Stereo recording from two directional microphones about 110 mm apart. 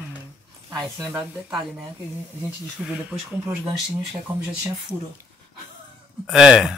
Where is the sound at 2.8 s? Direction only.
Centre (ahead or behind).